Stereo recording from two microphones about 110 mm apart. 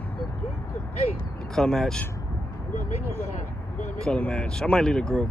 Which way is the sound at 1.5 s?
5° left (ahead or behind).